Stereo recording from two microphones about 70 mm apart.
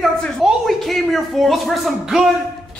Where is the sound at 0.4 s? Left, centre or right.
Centre.